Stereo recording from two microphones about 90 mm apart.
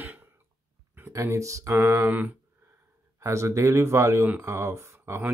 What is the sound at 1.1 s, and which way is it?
Speech, 35° right (ahead or behind).